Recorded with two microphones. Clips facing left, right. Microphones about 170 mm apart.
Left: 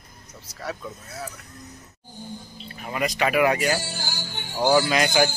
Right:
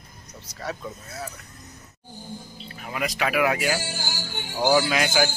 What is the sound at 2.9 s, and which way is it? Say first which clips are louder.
A man's voice: left 3 dB; centre (ahead or behind).